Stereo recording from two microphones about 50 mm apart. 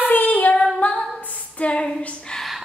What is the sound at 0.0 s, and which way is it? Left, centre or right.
Child singing, left.